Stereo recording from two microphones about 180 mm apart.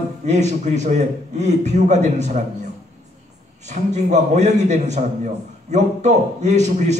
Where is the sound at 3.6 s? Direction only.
40° right (ahead or behind).